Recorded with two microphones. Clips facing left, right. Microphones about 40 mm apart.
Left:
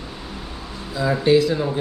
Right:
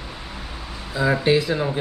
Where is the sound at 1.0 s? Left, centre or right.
Centre.